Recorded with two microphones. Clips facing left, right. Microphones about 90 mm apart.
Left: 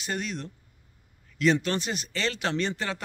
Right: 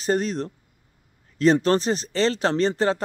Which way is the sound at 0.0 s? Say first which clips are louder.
Right 9 dB; 35° right (ahead or behind).